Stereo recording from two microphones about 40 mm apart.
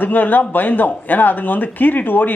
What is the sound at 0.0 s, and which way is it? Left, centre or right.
Speech, left.